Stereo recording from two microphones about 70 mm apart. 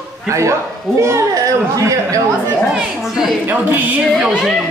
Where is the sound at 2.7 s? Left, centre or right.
Centre.